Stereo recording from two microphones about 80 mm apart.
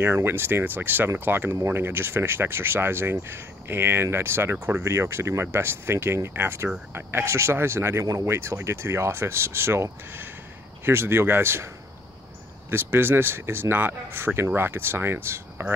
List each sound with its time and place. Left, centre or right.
0.0 s speech: right
12.7 s speech: right